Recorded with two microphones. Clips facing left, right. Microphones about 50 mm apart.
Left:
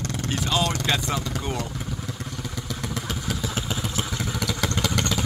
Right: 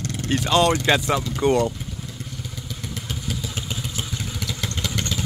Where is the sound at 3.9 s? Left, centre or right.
Left.